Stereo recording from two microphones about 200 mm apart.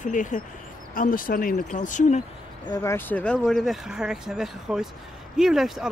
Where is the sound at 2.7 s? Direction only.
10° left (ahead or behind).